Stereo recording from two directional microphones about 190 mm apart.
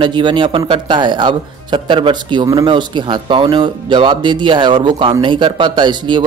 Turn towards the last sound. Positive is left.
turn(degrees=-25)  # may be behind; listen again after turning